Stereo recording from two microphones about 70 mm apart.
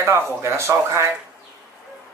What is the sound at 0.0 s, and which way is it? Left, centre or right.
Speech, right.